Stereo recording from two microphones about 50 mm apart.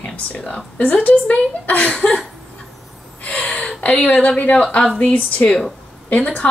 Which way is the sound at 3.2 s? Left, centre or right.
Left.